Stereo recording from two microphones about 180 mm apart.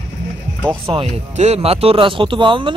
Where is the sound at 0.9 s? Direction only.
35° right (ahead or behind).